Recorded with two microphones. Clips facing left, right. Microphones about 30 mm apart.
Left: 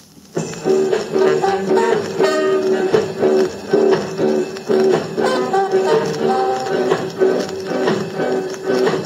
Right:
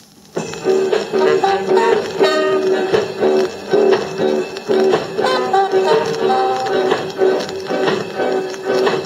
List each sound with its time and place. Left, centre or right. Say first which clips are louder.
0.7 s music: right 1 dB; right
2.2 s music: right 1 dB; right
6.0 s music: right 1 dB; right
6.3 s music: right 2 dB; right